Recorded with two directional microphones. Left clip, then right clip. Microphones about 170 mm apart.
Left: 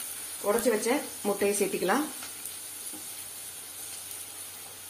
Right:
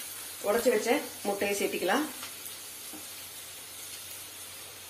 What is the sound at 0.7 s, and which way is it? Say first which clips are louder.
Speech: right 1 dB; 80° left.